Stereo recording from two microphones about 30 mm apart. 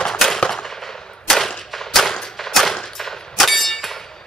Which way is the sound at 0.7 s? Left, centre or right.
Centre.